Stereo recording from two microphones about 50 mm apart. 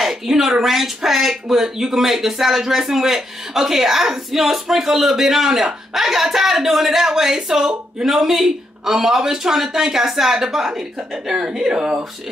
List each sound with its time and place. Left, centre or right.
0.0 s speech: centre